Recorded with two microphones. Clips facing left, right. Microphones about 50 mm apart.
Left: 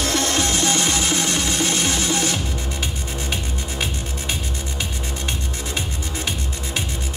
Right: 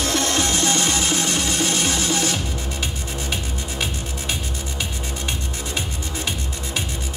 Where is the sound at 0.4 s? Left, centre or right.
Right.